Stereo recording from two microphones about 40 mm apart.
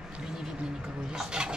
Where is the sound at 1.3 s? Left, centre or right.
Right.